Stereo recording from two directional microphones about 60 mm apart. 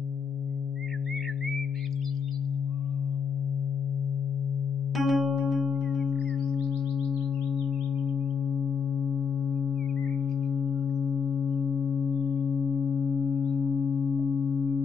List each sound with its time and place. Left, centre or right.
4.9 s music: centre
11.1 s singing bowl: centre
12.5 s music: centre